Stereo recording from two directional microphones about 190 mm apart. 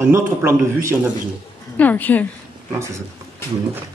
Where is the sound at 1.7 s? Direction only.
10° left (ahead or behind).